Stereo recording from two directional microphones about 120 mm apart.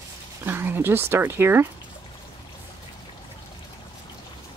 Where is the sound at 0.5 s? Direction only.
20° right (ahead or behind).